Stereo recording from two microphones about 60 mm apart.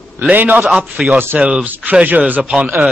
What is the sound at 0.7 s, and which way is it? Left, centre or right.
Speech, centre.